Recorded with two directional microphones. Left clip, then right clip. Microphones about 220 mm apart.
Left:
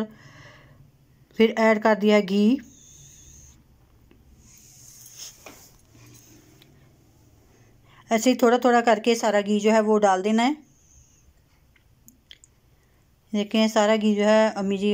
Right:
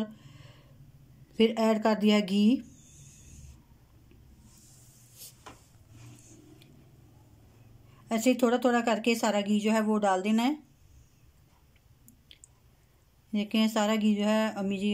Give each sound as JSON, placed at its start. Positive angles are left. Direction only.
{"t": 0.0, "sound": "a sound", "side_deg": 0}
{"t": 1.3, "sound": "speech", "side_deg": 0}
{"t": 8.0, "sound": "speech", "side_deg": 0}
{"t": 13.3, "sound": "speech", "side_deg": 0}